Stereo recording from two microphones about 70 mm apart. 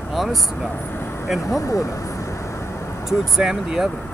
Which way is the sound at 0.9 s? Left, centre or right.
Left.